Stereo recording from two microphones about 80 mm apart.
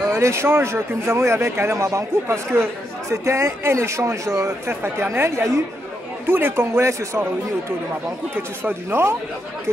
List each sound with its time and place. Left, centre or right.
0.1 s speech: right
8.4 s speech: right